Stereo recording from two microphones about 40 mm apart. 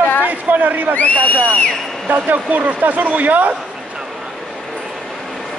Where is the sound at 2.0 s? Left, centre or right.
Right.